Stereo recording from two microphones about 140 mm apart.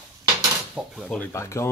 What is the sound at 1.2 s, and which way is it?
Speech, 20° left (ahead or behind).